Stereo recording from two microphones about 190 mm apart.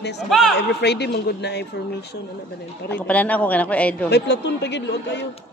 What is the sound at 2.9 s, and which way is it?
A man's voice, 5° left (ahead or behind).